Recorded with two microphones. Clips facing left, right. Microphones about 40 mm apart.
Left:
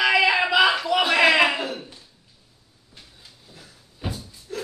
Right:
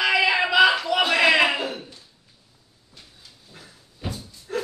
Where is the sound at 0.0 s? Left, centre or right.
Centre.